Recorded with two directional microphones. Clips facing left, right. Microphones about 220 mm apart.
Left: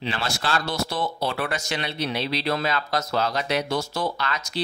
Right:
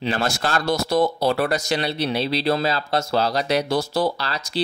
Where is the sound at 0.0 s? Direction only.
45° right (ahead or behind).